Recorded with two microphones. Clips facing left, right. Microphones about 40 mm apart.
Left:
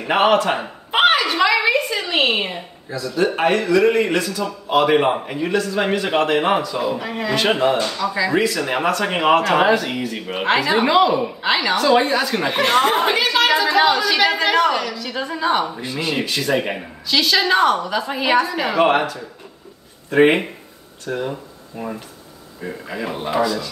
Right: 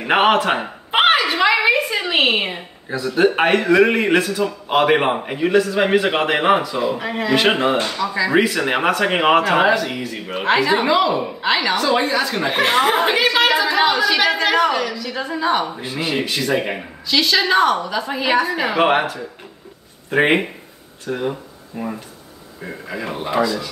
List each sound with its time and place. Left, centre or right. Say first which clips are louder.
0.0 s a man's voice: right 1 dB; right
0.9 s a sound: even; centre
2.9 s a man's voice: right 4 dB; right
6.9 s speech: right 2 dB; centre
7.3 s a man's voice: right 1 dB; right
8.0 s a woman's voice: even; centre
8.4 s a man's voice: right 2 dB; right
9.8 s a woman's voice: left 1 dB; centre
14.7 s speech: right 1 dB; centre
15.2 s a woman's voice: even; centre
15.8 s a woman's voice: right 1 dB; right; by 18.5 s centre
18.8 s a man's voice: left 1 dB; right
20.1 s a woman's voice: left 2 dB; centre